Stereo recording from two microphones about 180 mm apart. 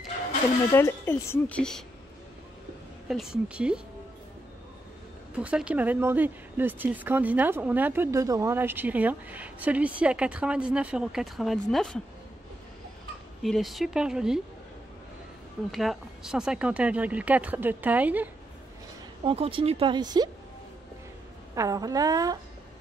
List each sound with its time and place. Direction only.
0.7 s speech: 15° left (ahead or behind)
3.1 s speech: centre (ahead or behind)
5.4 s speech: 5° right (ahead or behind)
13.4 s speech: centre (ahead or behind)
15.7 s speech: centre (ahead or behind)
19.2 s speech: 30° right (ahead or behind)
21.5 s speech: 20° right (ahead or behind)